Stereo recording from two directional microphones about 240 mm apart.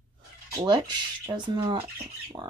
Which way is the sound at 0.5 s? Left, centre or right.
Centre.